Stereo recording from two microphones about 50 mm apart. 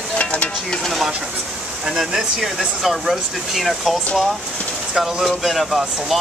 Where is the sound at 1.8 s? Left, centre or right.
Centre.